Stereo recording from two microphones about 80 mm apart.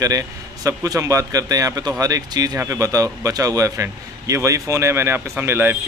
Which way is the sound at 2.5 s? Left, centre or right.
Right.